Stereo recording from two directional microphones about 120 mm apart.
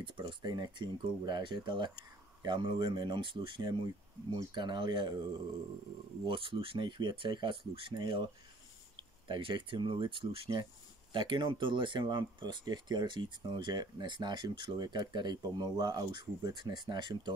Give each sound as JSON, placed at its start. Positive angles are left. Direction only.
{"t": 0.0, "sound": "speech", "side_deg": -40}
{"t": 6.2, "sound": "speech", "side_deg": -45}
{"t": 9.3, "sound": "speech", "side_deg": -45}